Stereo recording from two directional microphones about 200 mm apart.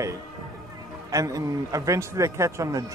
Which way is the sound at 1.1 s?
15° right (ahead or behind).